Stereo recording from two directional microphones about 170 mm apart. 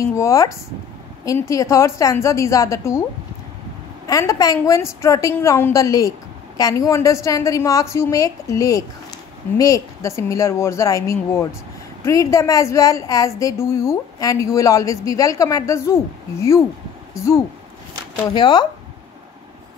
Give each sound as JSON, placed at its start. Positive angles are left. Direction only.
{"t": 0.1, "sound": "speech", "side_deg": 15}
{"t": 1.5, "sound": "speech", "side_deg": 20}
{"t": 4.1, "sound": "a woman's voice", "side_deg": 20}